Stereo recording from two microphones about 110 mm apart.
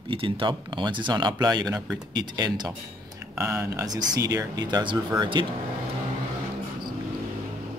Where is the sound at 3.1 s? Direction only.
25° right (ahead or behind).